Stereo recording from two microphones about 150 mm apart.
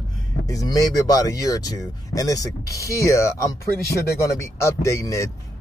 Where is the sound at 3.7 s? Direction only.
90° left.